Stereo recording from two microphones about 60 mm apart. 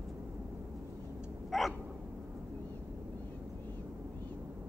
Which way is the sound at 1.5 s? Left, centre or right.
Centre.